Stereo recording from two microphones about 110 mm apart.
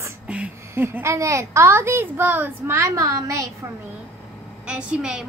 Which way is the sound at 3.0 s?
30° right (ahead or behind).